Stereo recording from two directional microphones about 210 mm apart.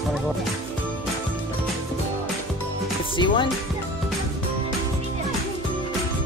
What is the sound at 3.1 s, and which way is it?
Speech, 25° left (ahead or behind).